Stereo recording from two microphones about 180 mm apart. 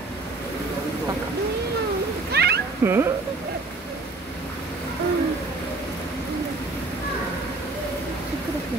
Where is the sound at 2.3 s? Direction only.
60° right (ahead or behind).